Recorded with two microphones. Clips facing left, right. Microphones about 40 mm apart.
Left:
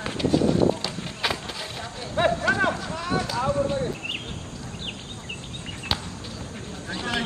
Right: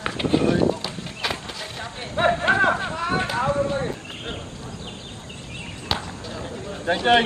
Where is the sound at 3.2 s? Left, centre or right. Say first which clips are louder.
Right 1 dB; right.